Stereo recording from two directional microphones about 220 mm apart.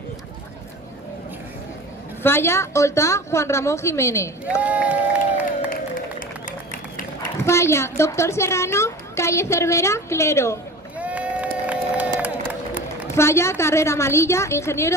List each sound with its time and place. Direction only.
2.2 s a woman's voice: 10° left (ahead or behind)
4.6 s speech: 5° right (ahead or behind)
5.7 s music: 40° left (ahead or behind)
7.4 s a woman's voice: 10° left (ahead or behind)
11.0 s a sound: 5° right (ahead or behind)
13.1 s a woman's voice: 10° left (ahead or behind)